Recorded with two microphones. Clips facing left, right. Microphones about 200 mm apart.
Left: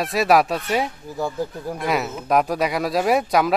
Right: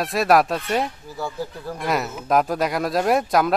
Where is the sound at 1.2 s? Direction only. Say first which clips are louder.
Left 4 dB; 15° left (ahead or behind).